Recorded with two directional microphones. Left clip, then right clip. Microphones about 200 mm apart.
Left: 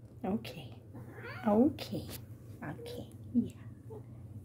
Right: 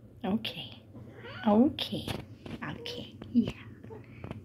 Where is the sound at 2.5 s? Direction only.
5° left (ahead or behind).